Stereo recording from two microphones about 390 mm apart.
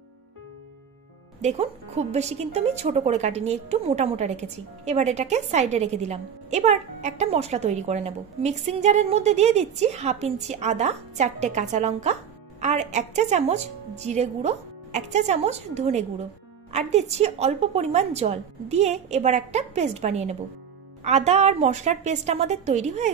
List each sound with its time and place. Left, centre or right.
1.4 s a woman's voice: centre